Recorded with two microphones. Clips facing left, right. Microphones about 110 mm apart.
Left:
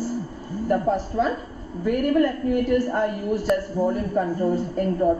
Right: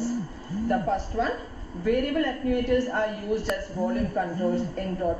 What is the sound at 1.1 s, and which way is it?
A woman's voice, 5° left (ahead or behind).